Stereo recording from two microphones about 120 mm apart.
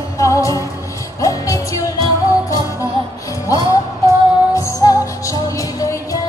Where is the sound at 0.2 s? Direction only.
25° left (ahead or behind).